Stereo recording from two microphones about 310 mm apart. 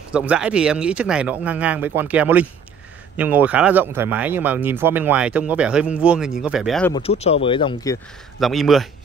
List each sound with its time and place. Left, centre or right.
0.1 s speech: centre
6.9 s speech: centre
8.4 s speech: centre